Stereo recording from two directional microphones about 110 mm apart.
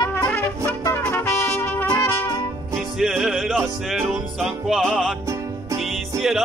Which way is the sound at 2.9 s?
Centre (ahead or behind).